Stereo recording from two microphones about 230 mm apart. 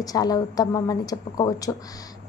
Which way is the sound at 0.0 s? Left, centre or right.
Centre.